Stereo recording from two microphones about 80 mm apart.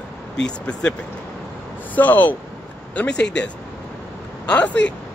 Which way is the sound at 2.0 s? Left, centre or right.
Left.